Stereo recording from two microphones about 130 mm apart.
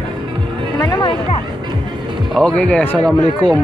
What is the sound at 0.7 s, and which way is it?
Music, 30° left (ahead or behind).